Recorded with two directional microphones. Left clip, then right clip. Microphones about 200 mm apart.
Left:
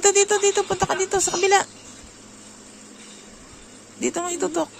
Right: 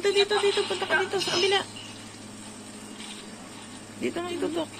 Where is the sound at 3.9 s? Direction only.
50° left (ahead or behind).